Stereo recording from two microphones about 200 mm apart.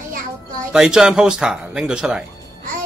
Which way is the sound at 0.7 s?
5° right (ahead or behind).